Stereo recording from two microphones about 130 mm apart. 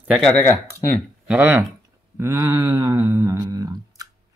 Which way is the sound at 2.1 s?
25° right (ahead or behind).